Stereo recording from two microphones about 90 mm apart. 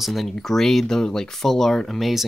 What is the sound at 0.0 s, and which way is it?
Speech, centre (ahead or behind).